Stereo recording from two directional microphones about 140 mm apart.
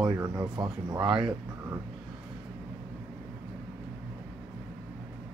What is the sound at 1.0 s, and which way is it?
Speech, 5° right (ahead or behind).